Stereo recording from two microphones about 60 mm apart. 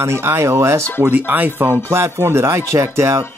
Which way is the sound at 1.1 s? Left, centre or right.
Right.